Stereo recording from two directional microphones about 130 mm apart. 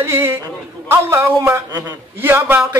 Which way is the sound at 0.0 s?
20° right (ahead or behind).